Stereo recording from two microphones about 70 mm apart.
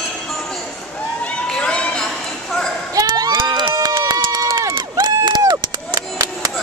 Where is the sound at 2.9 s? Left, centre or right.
Right.